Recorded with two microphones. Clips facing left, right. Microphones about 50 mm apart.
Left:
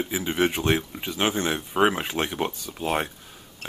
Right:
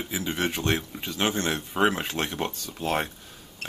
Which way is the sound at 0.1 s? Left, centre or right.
Centre.